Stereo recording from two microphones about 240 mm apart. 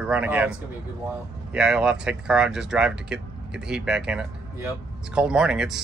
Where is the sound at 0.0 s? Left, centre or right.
Centre.